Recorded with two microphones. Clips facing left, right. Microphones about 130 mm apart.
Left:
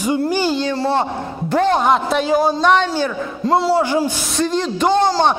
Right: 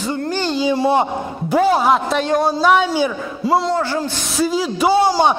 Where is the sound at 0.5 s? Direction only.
10° right (ahead or behind).